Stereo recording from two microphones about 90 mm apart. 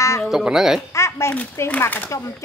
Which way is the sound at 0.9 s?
30° left (ahead or behind).